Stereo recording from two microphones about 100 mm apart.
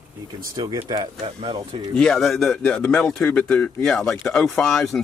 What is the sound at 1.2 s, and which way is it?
Speech, 70° right (ahead or behind).